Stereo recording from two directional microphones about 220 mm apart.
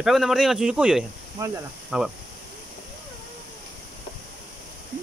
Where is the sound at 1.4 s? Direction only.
15° right (ahead or behind).